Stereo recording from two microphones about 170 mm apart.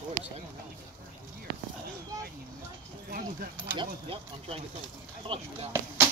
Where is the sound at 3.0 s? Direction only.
60° right (ahead or behind).